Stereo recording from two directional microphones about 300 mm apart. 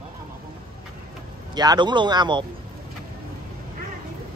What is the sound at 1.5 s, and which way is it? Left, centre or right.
Speech, centre.